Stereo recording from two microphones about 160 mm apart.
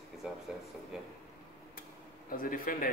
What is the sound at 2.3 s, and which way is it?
Speech, 60° left (ahead or behind).